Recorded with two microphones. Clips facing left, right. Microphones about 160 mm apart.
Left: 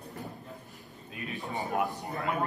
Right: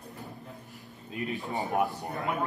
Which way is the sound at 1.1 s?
20° right (ahead or behind).